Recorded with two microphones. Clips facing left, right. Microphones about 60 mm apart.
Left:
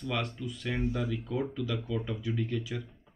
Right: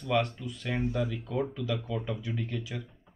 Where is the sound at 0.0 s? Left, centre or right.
Centre.